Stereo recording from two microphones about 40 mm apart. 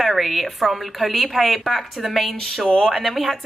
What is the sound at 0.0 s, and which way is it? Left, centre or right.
A woman's voice, centre.